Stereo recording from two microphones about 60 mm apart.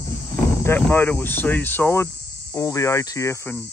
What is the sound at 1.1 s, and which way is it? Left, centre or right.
Speech, left.